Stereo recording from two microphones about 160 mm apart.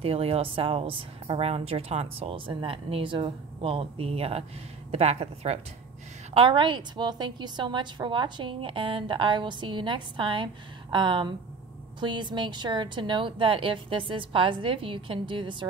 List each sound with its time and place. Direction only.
0.0 s a woman's voice: 35° right (ahead or behind)